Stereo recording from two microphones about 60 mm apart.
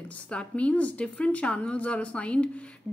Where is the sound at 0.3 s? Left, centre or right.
Centre.